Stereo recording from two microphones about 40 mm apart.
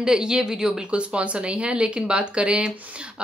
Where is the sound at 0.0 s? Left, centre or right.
Centre.